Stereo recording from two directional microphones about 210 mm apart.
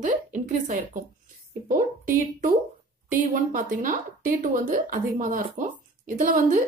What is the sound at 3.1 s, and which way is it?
Speech, 40° right (ahead or behind).